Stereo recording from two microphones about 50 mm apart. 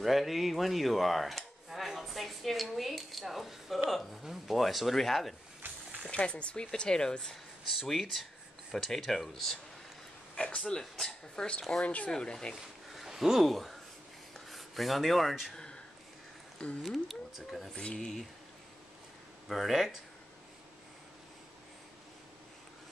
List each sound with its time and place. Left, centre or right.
0.0 s speech: centre
6.0 s speech: left
7.7 s speech: centre
10.3 s a man's voice: centre
11.8 s speech: left
12.1 s speech: centre
12.5 s speech: centre
14.3 s writing: centre
15.5 s a sound: centre
16.5 s speech: left
16.8 s speech: centre
17.7 s speech: centre
19.4 s speech: centre